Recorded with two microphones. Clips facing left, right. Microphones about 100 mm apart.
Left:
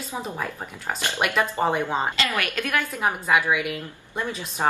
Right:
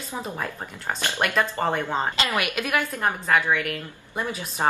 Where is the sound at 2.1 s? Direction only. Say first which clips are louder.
Right 1 dB; 20° right (ahead or behind).